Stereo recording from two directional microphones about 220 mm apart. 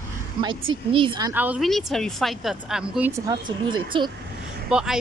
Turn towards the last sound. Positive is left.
turn(degrees=-5)  # may be behind; listen again after turning